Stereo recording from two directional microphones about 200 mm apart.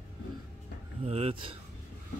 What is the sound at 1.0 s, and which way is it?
Speech, 30° right (ahead or behind).